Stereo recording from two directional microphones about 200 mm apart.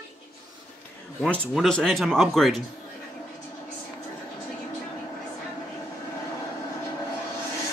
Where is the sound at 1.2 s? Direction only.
5° left (ahead or behind).